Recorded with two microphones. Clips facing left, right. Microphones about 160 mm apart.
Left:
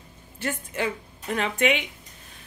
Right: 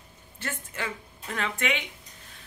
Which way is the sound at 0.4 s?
15° left (ahead or behind).